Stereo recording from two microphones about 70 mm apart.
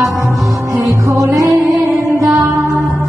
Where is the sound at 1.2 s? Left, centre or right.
Right.